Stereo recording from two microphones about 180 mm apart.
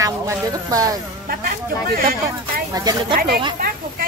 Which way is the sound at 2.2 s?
20° right (ahead or behind).